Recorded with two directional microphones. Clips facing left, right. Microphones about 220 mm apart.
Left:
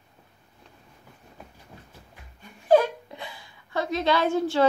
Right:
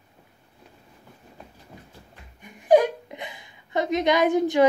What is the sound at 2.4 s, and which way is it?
A woman's voice, 15° right (ahead or behind).